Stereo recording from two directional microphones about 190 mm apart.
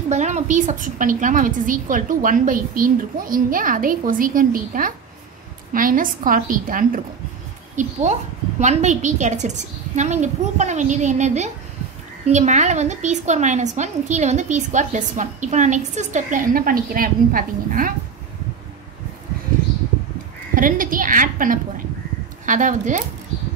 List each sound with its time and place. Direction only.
0.1 s a woman's voice: 40° right (ahead or behind)
20.5 s a woman's voice: 45° right (ahead or behind)